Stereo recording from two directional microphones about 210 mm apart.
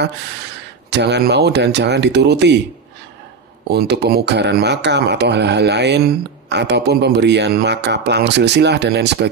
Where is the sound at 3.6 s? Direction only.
50° right (ahead or behind).